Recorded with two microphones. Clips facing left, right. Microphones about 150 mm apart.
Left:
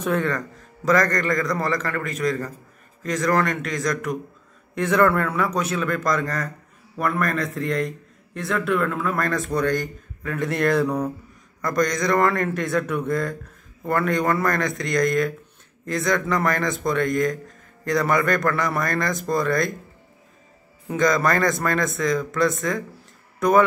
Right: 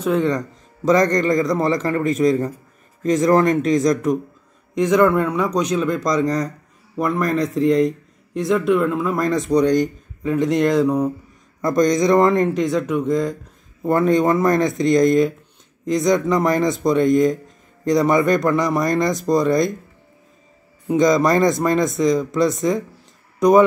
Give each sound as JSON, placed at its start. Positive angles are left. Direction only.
{"t": 0.0, "sound": "a man's voice", "side_deg": -15}
{"t": 4.7, "sound": "a man's voice", "side_deg": -15}
{"t": 20.8, "sound": "a man's voice", "side_deg": -20}